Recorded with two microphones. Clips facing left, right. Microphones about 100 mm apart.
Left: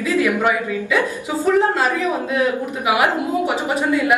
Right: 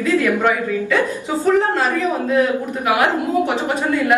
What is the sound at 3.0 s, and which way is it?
A woman's voice, 15° left (ahead or behind).